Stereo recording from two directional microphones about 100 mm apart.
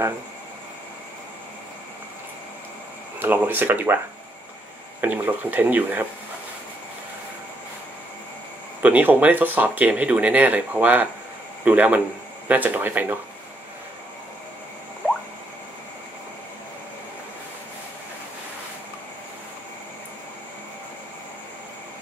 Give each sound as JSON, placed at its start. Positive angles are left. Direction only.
{"t": 3.2, "sound": "speech", "side_deg": -20}
{"t": 5.0, "sound": "speech", "side_deg": -20}
{"t": 8.8, "sound": "speech", "side_deg": -15}